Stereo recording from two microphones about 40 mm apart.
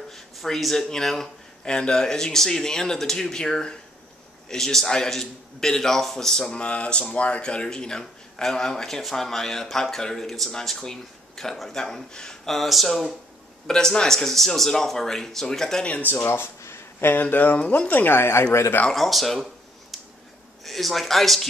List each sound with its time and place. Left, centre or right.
0.1 s a sound: centre
0.8 s speech: centre
1.6 s speech: left
6.4 s speech: left
12.4 s speech: centre
13.7 s speech: centre
16.3 s speech: left
17.9 s speech: left
18.9 s speech: centre
20.6 s speech: centre